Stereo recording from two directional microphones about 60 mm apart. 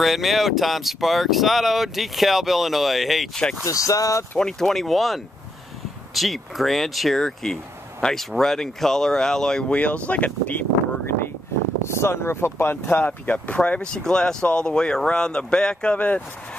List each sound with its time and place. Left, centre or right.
0.0 s speech: centre
3.6 s speech: left
4.4 s speech: centre; by 11.1 s left
11.8 s speech: left